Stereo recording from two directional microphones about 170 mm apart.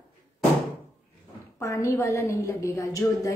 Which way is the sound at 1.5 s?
15° left (ahead or behind).